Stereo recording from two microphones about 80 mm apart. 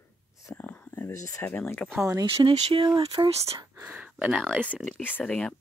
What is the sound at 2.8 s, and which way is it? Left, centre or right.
Speech, right.